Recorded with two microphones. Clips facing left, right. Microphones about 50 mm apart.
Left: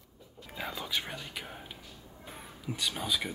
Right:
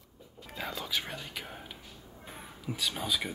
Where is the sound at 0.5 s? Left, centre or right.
Centre.